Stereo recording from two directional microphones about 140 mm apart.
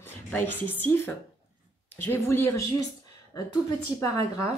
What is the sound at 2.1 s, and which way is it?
Speech, 15° left (ahead or behind).